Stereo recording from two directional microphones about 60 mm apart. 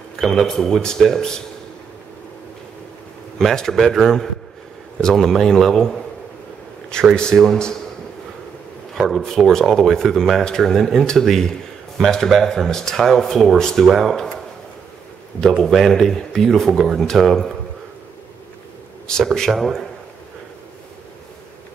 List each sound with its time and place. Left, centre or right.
0.2 s speech: centre
3.3 s speech: centre
7.3 s a man's voice: right
8.9 s a sound: centre
9.2 s speech: centre
15.6 s speech: centre
19.3 s speech: centre